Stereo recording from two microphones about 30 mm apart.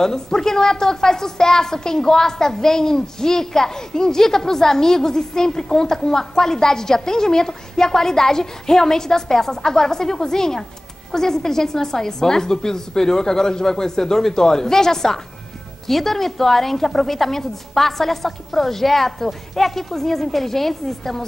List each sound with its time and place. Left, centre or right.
0.0 s a woman's voice: centre
15.9 s a woman's voice: centre